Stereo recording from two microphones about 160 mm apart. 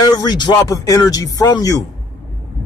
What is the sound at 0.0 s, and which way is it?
Speech, 25° left (ahead or behind).